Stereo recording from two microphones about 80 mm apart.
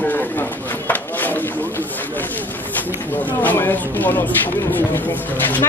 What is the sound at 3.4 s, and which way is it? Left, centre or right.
Speech, left.